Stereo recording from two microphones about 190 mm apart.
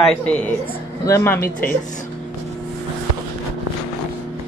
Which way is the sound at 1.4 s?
50° left (ahead or behind).